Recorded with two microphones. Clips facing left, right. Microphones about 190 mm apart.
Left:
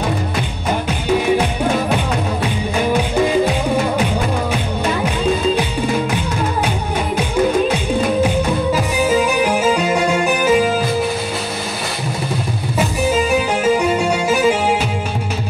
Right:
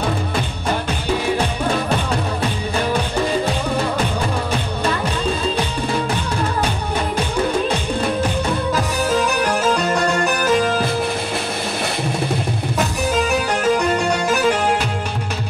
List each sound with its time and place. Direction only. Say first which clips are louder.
8.7 s music: left 3 dB; 10° left (ahead or behind)
12.7 s music: left 4 dB; 5° left (ahead or behind)